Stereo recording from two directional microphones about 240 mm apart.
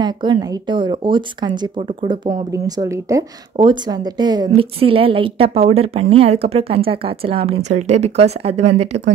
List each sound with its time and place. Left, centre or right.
0.0 s a woman's voice: centre